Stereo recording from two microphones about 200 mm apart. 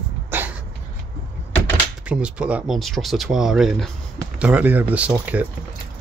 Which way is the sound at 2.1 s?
5° right (ahead or behind).